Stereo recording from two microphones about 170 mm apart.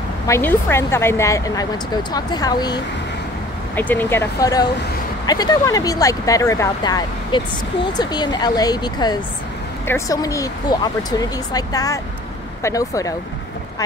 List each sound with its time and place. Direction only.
0.3 s speech: 15° left (ahead or behind)
3.7 s speech: 10° left (ahead or behind)